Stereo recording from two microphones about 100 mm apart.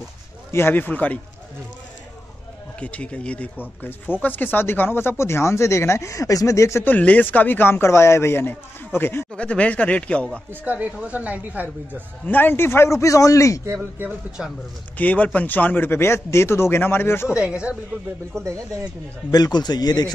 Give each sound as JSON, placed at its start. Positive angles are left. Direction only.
{"t": 0.5, "sound": "speech", "side_deg": 25}
{"t": 2.8, "sound": "speech", "side_deg": 10}
{"t": 6.9, "sound": "speech", "side_deg": 15}
{"t": 10.5, "sound": "speech", "side_deg": -15}
{"t": 12.3, "sound": "speech", "side_deg": 20}
{"t": 14.4, "sound": "speech", "side_deg": 0}
{"t": 15.0, "sound": "speech", "side_deg": 15}
{"t": 17.3, "sound": "speech", "side_deg": -10}
{"t": 18.4, "sound": "speech", "side_deg": -35}
{"t": 19.3, "sound": "a man's voice", "side_deg": 45}